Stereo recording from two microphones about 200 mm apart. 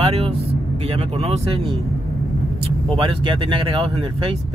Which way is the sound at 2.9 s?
25° right (ahead or behind).